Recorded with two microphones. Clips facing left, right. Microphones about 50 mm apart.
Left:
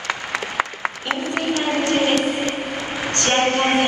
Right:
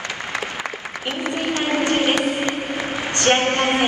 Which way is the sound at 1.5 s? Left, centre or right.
Right.